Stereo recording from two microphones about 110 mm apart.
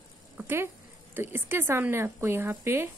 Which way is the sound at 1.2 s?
20° right (ahead or behind).